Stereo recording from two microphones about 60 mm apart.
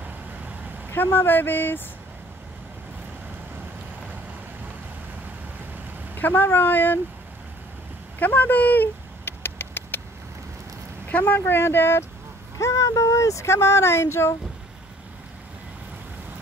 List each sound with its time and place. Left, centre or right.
1.1 s speech: left
6.1 s speech: left
8.2 s a sound: left
11.1 s speech: left
11.3 s speech: left
12.5 s speech: left